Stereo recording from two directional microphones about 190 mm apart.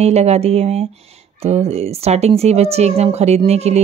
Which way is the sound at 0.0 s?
35° right (ahead or behind).